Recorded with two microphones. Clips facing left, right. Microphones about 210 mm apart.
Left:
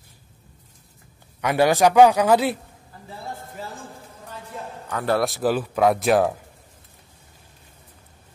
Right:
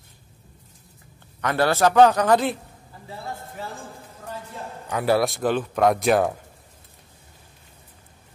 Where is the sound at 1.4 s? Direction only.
10° left (ahead or behind).